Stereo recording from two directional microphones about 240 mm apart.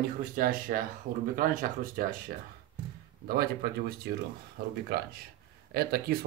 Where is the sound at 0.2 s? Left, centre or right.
Right.